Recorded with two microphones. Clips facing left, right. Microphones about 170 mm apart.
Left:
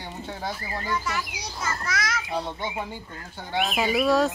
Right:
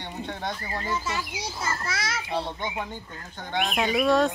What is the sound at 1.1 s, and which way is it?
A child's voice, 25° right (ahead or behind).